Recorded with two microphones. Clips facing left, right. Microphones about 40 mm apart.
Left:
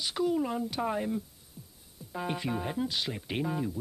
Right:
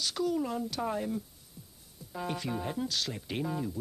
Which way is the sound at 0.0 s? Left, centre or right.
Centre.